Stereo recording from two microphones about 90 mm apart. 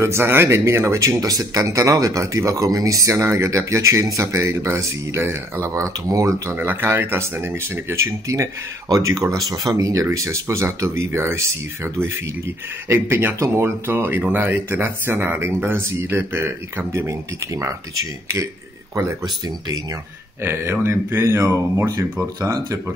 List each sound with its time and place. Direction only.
0.0 s speech: 30° right (ahead or behind)
20.4 s speech: 25° right (ahead or behind)